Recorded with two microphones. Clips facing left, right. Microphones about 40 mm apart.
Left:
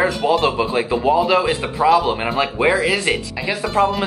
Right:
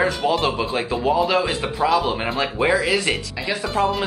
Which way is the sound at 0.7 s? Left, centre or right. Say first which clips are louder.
Left 4 dB; centre.